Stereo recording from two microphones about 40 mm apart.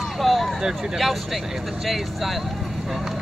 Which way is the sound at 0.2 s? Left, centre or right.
Centre.